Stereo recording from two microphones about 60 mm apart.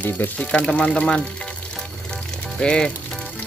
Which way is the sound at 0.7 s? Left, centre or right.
Centre.